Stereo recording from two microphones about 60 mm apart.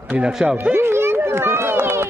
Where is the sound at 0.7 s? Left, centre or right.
Right.